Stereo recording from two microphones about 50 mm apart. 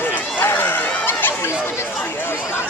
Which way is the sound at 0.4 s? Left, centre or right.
Left.